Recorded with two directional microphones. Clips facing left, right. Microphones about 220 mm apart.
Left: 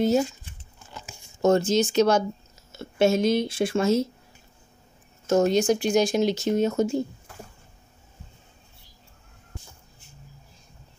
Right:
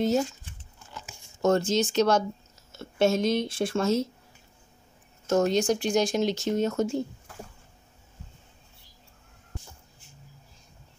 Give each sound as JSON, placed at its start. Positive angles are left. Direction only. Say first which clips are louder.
{"t": 0.0, "sound": "speech", "louder": "left 3 dB", "side_deg": 10}
{"t": 1.4, "sound": "speech", "louder": "left 3 dB", "side_deg": 10}
{"t": 5.2, "sound": "speech", "louder": "left 3 dB", "side_deg": 10}